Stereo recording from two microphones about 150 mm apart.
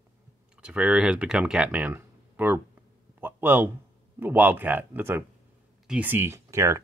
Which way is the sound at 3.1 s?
15° right (ahead or behind).